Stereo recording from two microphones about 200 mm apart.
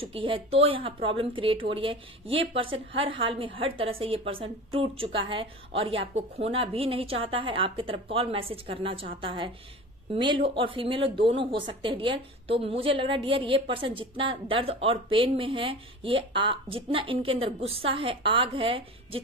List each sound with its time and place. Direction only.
0.0 s a woman's voice: 25° right (ahead or behind)